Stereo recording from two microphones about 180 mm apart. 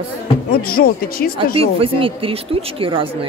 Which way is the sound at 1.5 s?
30° right (ahead or behind).